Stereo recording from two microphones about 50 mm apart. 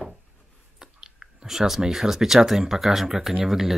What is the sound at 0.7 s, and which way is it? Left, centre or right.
Speech, centre.